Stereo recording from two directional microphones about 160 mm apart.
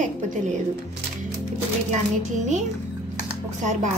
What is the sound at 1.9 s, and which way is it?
Speech, 45° right (ahead or behind).